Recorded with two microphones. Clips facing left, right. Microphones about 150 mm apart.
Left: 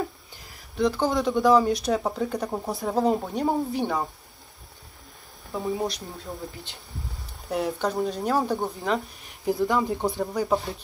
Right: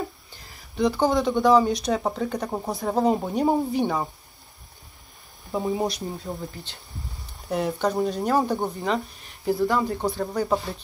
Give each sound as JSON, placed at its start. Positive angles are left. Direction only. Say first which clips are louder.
{"t": 0.7, "sound": "speech", "louder": "right 2 dB", "side_deg": 0}
{"t": 2.5, "sound": "speech", "louder": "right 1 dB", "side_deg": -20}
{"t": 2.8, "sound": "speech", "louder": "right 1 dB", "side_deg": 0}
{"t": 5.5, "sound": "speech", "louder": "right 3 dB", "side_deg": -15}
{"t": 7.4, "sound": "speech", "louder": "right 2 dB", "side_deg": 0}